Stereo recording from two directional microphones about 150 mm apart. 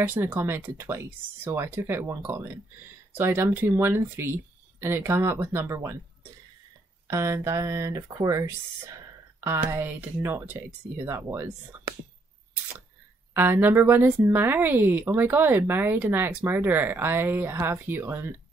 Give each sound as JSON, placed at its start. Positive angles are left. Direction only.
{"t": 0.0, "sound": "speech", "side_deg": -15}
{"t": 7.1, "sound": "speech", "side_deg": -15}
{"t": 13.3, "sound": "speech", "side_deg": -15}